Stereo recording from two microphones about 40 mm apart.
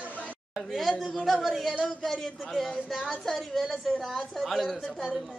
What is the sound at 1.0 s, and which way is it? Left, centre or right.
A man's voice, centre.